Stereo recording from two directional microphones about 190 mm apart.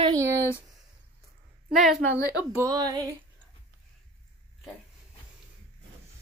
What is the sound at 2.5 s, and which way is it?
Speech, 15° right (ahead or behind).